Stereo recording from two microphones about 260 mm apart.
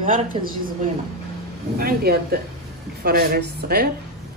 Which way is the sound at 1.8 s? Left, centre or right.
Right.